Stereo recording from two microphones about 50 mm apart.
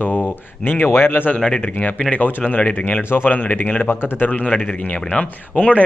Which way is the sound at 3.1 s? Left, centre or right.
Left.